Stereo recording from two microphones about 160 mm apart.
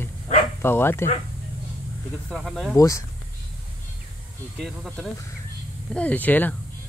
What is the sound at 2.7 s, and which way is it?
Speech, 20° left (ahead or behind).